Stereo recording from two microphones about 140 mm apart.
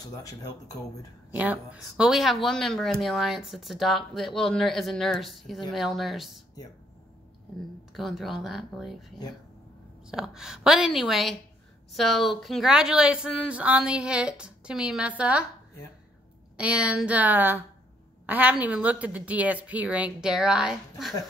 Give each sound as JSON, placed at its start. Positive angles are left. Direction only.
{"t": 0.0, "sound": "speech", "side_deg": 25}
{"t": 1.3, "sound": "speech", "side_deg": -10}
{"t": 7.9, "sound": "speech", "side_deg": 0}
{"t": 16.5, "sound": "speech", "side_deg": -10}